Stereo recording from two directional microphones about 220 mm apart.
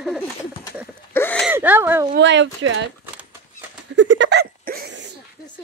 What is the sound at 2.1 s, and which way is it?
Speech, 55° right (ahead or behind).